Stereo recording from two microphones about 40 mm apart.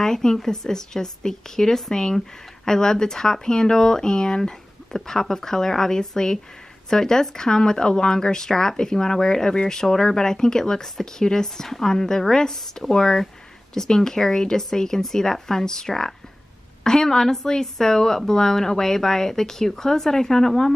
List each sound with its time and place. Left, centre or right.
0.0 s speech: centre